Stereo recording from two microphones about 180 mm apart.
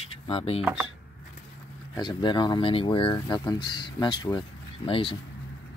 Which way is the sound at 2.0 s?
25° left (ahead or behind).